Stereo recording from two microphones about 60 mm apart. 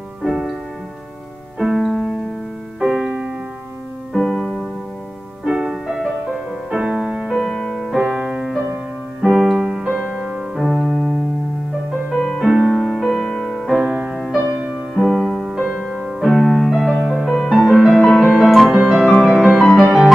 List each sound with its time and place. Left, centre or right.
0.2 s music: centre
1.6 s music: centre
4.1 s music: centre
5.4 s music: centre
8.1 s music: centre
9.2 s keyboard: centre
10.5 s music: centre
12.2 s music: centre
13.8 s music: centre
15.0 s music: centre
18.8 s piano: right
19.2 s music: centre
19.5 s music: centre